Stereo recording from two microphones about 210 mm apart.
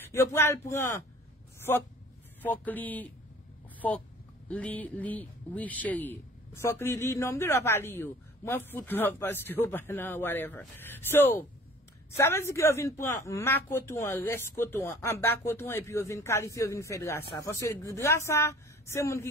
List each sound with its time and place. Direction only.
0.1 s a man's voice: 10° left (ahead or behind)
4.5 s a man's voice: 5° left (ahead or behind)